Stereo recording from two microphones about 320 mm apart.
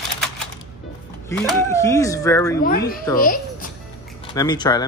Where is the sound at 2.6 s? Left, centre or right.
Left.